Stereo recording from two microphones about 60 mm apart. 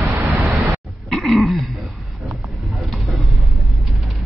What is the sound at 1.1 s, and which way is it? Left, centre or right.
Throat clearing, centre.